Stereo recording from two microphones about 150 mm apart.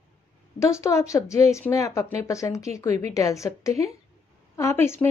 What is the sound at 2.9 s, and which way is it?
Speech, 50° right (ahead or behind).